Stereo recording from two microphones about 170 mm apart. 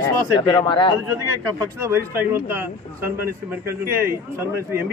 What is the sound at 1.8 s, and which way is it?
A man's voice, 15° right (ahead or behind).